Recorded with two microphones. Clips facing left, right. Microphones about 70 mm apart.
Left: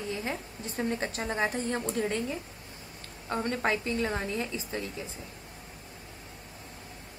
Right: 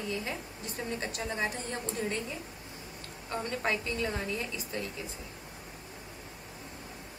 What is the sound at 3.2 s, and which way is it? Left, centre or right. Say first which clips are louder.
A woman's voice: left 3 dB; left.